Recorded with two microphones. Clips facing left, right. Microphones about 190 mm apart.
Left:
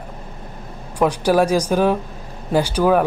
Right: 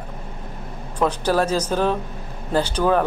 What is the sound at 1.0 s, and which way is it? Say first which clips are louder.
Speech: left 4 dB; 10° left (ahead or behind).